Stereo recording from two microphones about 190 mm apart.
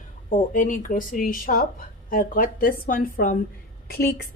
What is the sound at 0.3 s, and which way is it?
A woman's voice, 40° left (ahead or behind).